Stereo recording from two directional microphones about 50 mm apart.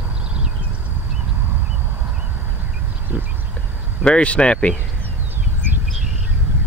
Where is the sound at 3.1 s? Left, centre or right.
Right.